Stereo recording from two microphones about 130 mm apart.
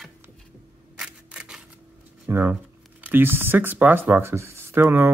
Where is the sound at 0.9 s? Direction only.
5° right (ahead or behind).